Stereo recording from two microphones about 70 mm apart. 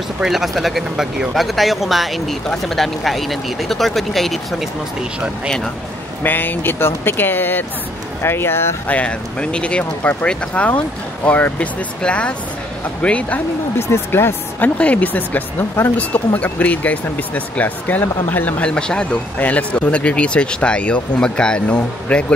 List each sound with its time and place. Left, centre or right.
0.2 s speech: centre
6.2 s speech: left
8.8 s speech: centre
13.7 s speech: left
14.8 s speech: left
18.6 s speech: centre